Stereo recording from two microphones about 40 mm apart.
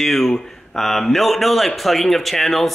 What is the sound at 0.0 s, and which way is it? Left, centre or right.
A man's voice, centre.